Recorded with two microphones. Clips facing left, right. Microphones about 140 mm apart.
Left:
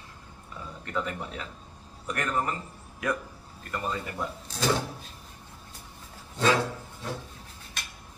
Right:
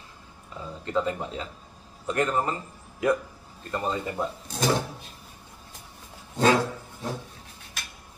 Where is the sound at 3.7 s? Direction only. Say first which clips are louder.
Right 4 dB; 25° right (ahead or behind).